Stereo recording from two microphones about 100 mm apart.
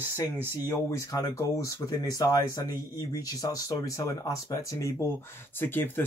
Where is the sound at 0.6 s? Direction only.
30° left (ahead or behind).